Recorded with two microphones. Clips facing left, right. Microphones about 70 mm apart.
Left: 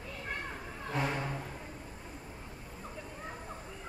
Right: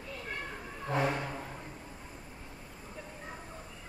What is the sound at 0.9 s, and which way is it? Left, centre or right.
Music, right.